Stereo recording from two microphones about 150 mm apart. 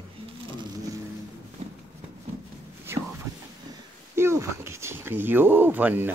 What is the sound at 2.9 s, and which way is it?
Whispering, 15° right (ahead or behind).